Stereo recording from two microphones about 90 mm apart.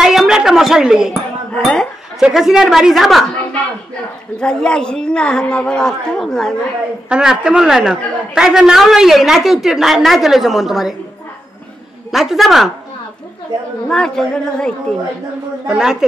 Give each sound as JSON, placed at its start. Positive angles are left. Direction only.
{"t": 0.0, "sound": "a sound", "side_deg": -5}
{"t": 1.6, "sound": "a man's voice", "side_deg": 5}
{"t": 4.4, "sound": "a man's voice", "side_deg": 10}
{"t": 7.1, "sound": "a man's voice", "side_deg": -10}
{"t": 12.1, "sound": "a man's voice", "side_deg": -5}
{"t": 13.8, "sound": "a man's voice", "side_deg": 10}
{"t": 15.6, "sound": "a woman's voice", "side_deg": -5}